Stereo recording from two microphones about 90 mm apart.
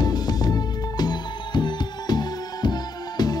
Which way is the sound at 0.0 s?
50° left (ahead or behind).